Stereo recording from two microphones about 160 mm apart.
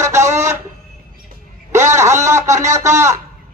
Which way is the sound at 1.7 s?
20° right (ahead or behind).